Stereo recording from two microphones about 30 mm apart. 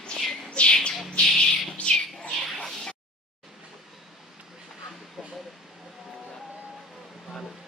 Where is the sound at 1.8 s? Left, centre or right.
Left.